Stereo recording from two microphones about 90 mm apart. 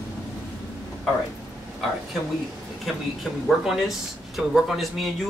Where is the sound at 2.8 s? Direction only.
Centre (ahead or behind).